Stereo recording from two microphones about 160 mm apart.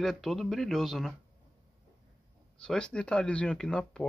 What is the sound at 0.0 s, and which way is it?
Speech, centre (ahead or behind).